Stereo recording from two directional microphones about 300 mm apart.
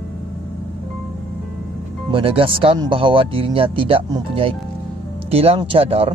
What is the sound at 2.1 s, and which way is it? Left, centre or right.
Speech, centre.